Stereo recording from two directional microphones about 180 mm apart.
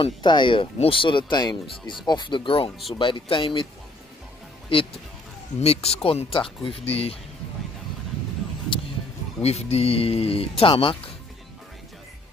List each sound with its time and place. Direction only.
0.0 s speech: 25° left (ahead or behind)
4.7 s music: 30° left (ahead or behind)
5.6 s speech: 35° left (ahead or behind)
9.4 s speech: 35° left (ahead or behind)